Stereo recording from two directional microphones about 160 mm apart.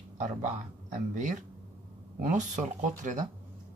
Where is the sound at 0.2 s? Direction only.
50° right (ahead or behind).